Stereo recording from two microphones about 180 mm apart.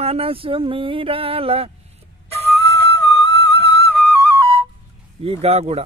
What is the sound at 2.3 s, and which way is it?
Flute, 35° right (ahead or behind).